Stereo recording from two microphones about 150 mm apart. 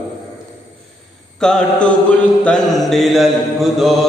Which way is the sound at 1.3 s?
5° left (ahead or behind).